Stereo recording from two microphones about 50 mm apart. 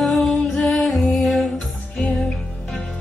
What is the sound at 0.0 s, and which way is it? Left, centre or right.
Music, centre.